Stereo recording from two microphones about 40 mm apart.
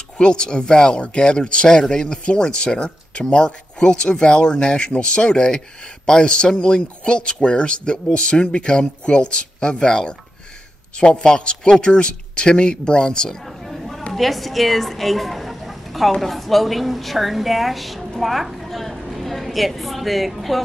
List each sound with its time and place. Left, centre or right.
0.2 s speech: left
13.5 s a sound: centre
14.1 s a woman's voice: centre